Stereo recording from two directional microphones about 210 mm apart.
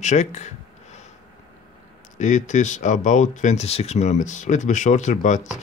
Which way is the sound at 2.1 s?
35° left (ahead or behind).